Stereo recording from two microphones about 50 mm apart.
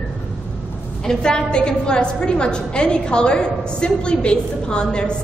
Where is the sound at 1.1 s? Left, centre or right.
Centre.